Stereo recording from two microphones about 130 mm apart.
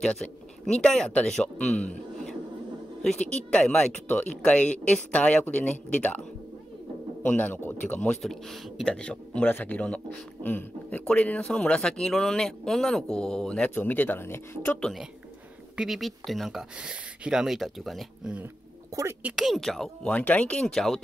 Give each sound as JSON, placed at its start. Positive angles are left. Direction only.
{"t": 0.0, "sound": "a man's voice", "side_deg": 5}
{"t": 7.2, "sound": "a man's voice", "side_deg": 10}
{"t": 15.7, "sound": "speech", "side_deg": -5}
{"t": 18.9, "sound": "speech", "side_deg": -25}
{"t": 19.2, "sound": "speech", "side_deg": -5}